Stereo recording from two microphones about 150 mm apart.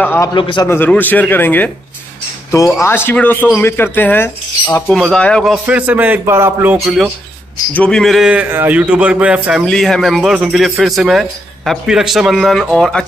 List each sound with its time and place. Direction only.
0.0 s speech: 15° left (ahead or behind)
0.3 s a man's voice: 30° left (ahead or behind)
0.7 s speech: 15° left (ahead or behind)
4.8 s a man's voice: centre (ahead or behind)
7.7 s a man's voice: 5° left (ahead or behind)
9.7 s a man's voice: 5° left (ahead or behind)